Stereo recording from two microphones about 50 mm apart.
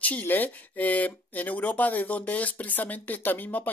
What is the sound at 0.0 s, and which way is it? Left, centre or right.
Speech, left.